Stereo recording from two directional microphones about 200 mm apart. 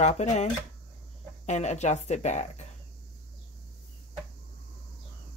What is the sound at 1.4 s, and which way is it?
Speech, 35° left (ahead or behind).